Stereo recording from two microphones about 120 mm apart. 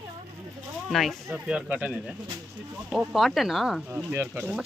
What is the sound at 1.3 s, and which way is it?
Speech, 10° right (ahead or behind).